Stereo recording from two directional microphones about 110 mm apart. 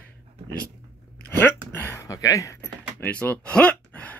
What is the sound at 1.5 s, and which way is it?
Speech, 20° left (ahead or behind).